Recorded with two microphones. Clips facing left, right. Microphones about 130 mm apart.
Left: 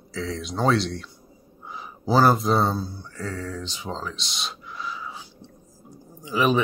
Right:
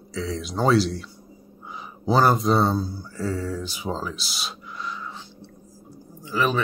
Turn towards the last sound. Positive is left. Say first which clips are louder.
# left 2 dB
turn(degrees=15)  # may be behind; listen again after turning